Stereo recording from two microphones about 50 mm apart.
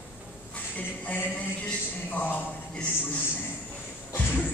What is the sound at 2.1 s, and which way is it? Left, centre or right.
Speech, left.